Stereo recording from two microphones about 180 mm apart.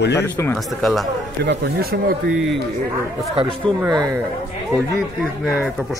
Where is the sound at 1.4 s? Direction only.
65° right (ahead or behind).